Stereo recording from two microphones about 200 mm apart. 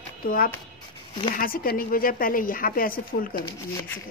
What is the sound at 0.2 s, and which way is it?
Speech, 45° left (ahead or behind).